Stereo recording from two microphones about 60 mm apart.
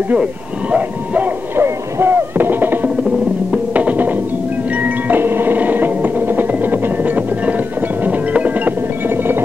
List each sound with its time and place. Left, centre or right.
0.1 s speech: right
1.6 s music: right